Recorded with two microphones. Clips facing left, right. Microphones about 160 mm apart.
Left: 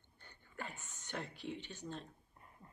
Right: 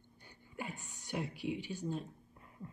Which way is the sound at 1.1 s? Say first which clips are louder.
Right 6 dB; 10° right (ahead or behind).